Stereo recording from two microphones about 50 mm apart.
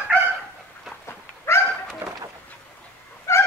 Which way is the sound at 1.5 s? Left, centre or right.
Left.